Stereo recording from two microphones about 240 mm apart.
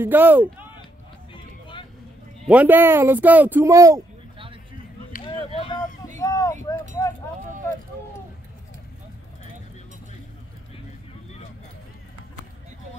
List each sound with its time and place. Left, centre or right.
0.0 s speech: centre
1.3 s vehicle: left
2.4 s speech: centre
6.1 s a sound: centre